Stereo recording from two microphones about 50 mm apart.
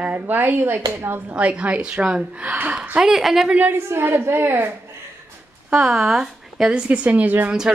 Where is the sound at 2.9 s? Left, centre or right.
Centre.